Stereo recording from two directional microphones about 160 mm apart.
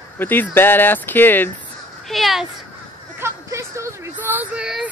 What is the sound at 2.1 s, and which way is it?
Speech, centre (ahead or behind).